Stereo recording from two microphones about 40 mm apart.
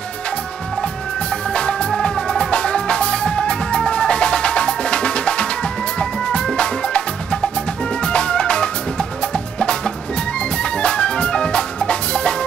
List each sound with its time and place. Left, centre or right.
1.5 s music: left